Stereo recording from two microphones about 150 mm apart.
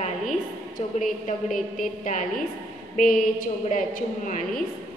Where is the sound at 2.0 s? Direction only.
60° left (ahead or behind).